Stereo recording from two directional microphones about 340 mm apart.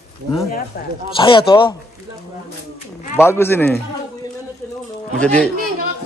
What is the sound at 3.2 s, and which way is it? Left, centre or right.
Speech, centre.